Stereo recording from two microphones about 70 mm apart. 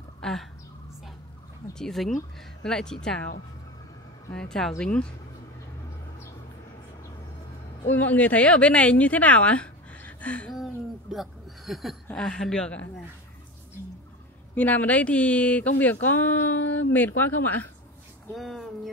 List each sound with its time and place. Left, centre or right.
0.2 s speech: centre
1.7 s speech: centre
4.3 s speech: centre
7.9 s a woman's voice: left
10.5 s speech: centre
14.5 s a woman's voice: left
18.3 s a sound: centre